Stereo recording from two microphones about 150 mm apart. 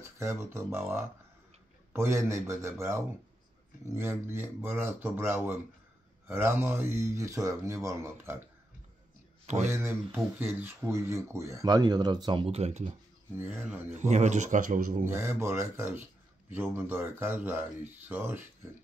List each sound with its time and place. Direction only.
0.2 s a man's voice: 15° right (ahead or behind)
9.7 s speech: 15° right (ahead or behind); by 12.9 s 45° right (ahead or behind)
13.3 s a man's voice: 15° right (ahead or behind)
13.8 s speech: 50° right (ahead or behind)
15.0 s a man's voice: 15° right (ahead or behind)